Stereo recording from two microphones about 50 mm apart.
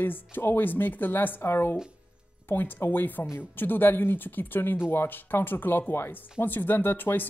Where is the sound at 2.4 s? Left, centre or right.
Left.